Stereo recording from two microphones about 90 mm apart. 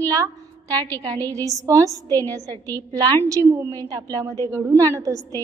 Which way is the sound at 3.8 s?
40° right (ahead or behind).